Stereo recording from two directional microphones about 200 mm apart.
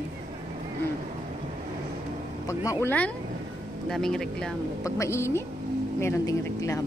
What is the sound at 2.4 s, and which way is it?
A woman's voice, 15° left (ahead or behind).